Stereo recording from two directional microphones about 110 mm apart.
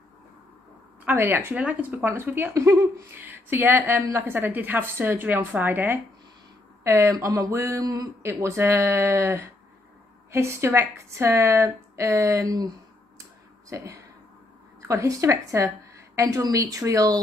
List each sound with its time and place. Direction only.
1.0 s speech: 20° right (ahead or behind)
13.7 s speech: 30° right (ahead or behind)